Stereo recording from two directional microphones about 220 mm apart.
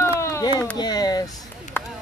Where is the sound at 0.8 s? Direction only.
20° left (ahead or behind).